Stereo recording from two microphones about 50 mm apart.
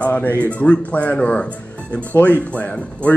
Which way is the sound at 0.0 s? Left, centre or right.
Left.